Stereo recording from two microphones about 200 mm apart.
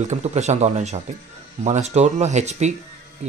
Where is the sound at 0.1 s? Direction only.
35° right (ahead or behind).